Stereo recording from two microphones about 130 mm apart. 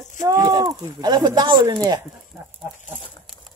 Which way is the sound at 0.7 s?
30° right (ahead or behind).